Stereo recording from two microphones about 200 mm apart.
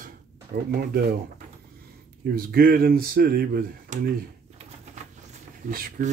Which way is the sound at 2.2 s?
50° right (ahead or behind).